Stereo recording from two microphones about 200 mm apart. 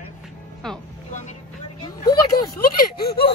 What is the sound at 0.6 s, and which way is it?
Speech, centre (ahead or behind).